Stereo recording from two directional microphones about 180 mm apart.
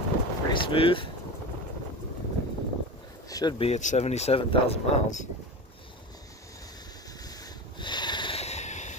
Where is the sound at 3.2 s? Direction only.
20° left (ahead or behind); by 5.3 s 40° left (ahead or behind).